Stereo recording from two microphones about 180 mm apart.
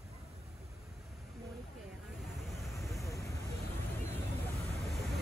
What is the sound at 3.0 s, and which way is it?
Vehicle, 15° left (ahead or behind).